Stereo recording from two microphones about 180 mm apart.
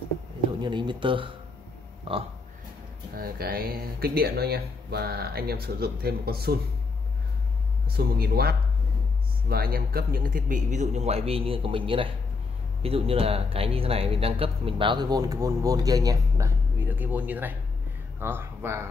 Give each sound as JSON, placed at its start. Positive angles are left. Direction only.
{"t": 0.6, "sound": "speech", "side_deg": -25}
{"t": 3.2, "sound": "speech", "side_deg": -55}
{"t": 7.9, "sound": "speech", "side_deg": -60}